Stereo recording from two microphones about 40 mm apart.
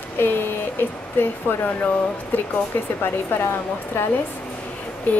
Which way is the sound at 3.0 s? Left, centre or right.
Left.